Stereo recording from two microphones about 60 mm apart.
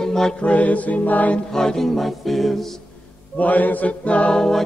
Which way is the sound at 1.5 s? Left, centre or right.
Centre.